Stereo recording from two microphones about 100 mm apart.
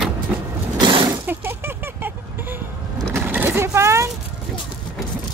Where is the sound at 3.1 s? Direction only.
20° right (ahead or behind).